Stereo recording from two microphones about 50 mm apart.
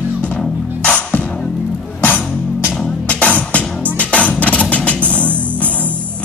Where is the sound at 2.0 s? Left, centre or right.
Left.